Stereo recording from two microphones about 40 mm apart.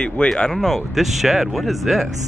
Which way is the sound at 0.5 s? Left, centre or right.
Centre.